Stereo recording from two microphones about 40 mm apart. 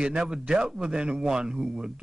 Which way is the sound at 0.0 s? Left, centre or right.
Right.